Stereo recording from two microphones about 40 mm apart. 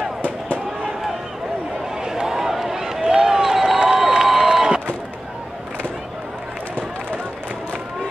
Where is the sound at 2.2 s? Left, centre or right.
Centre.